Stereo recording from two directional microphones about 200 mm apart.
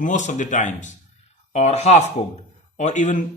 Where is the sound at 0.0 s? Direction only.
35° left (ahead or behind).